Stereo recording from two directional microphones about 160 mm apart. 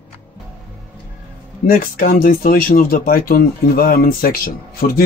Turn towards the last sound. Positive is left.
turn(degrees=65)  # may be behind; listen again after turning